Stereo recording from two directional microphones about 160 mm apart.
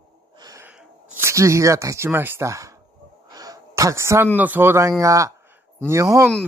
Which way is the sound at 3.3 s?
25° right (ahead or behind).